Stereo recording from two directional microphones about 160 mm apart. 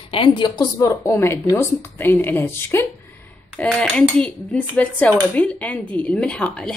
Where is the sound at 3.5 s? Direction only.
5° left (ahead or behind).